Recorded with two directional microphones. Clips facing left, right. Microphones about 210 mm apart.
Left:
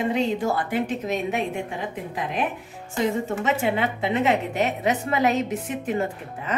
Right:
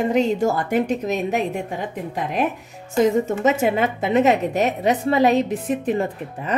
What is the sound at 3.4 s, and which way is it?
A woman's voice, 45° right (ahead or behind).